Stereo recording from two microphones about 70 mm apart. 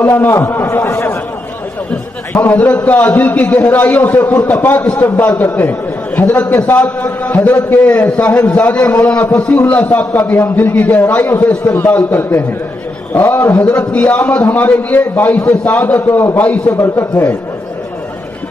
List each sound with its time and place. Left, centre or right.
0.0 s a man's voice: left
2.3 s a man's voice: left
16.7 s a man's voice: left